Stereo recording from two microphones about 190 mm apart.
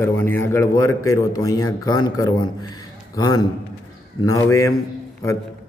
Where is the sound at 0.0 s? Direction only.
10° left (ahead or behind).